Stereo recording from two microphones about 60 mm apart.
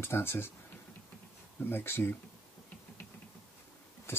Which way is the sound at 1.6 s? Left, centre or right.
Left.